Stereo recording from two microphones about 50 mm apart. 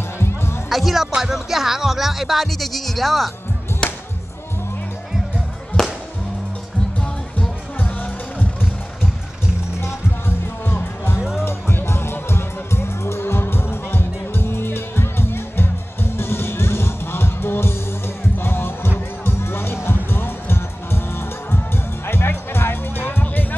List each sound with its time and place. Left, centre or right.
0.2 s music: left
0.7 s speech: centre
3.8 s music: centre
5.8 s music: centre
7.8 s music: left
9.8 s music: left